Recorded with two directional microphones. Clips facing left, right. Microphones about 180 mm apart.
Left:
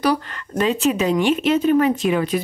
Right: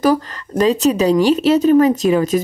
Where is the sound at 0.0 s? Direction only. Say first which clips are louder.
Right 5 dB; 40° right (ahead or behind).